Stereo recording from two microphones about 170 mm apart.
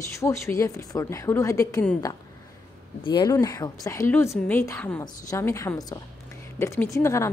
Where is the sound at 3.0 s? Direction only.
25° left (ahead or behind).